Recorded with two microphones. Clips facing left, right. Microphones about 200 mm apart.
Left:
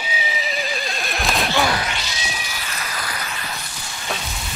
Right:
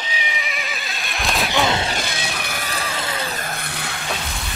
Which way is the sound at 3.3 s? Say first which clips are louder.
Right 4 dB; 50° right (ahead or behind).